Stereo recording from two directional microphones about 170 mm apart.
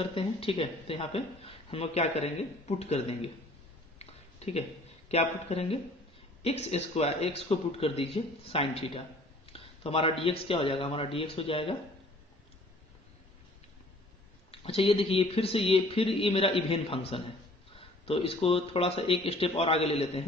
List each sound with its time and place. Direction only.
0.0 s speech: 30° left (ahead or behind)
4.0 s a sound: 40° left (ahead or behind)
6.4 s speech: 40° left (ahead or behind)
14.5 s speech: 35° left (ahead or behind)